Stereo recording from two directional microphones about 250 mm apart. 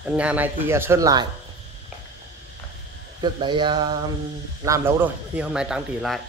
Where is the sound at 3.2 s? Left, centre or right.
Centre.